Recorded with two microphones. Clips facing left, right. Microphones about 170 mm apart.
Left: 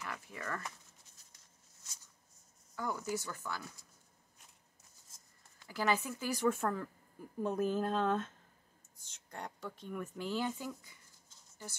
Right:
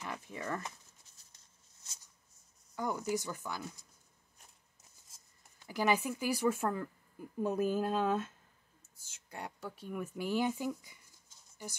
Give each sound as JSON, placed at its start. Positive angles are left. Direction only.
{"t": 0.0, "sound": "speech", "side_deg": -20}
{"t": 2.7, "sound": "speech", "side_deg": -15}
{"t": 5.4, "sound": "speech", "side_deg": -15}